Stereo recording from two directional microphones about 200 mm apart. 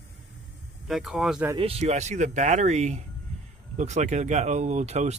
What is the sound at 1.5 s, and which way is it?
Speech, 30° right (ahead or behind).